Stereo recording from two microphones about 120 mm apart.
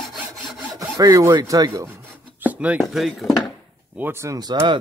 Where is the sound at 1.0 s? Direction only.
30° right (ahead or behind).